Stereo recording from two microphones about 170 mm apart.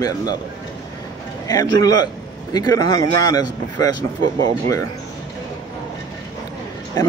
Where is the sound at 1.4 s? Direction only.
20° left (ahead or behind).